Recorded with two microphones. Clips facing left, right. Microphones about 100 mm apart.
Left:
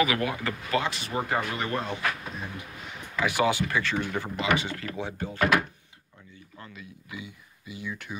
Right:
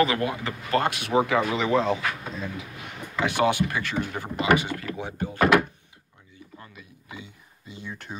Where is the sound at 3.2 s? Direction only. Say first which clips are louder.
Right 2 dB; 25° right (ahead or behind).